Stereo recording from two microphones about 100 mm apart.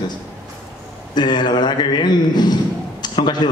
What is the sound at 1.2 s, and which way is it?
A man's voice, 50° left (ahead or behind).